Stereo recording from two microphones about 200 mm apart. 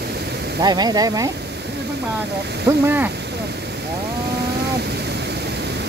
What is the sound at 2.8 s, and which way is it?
Speech, 10° right (ahead or behind).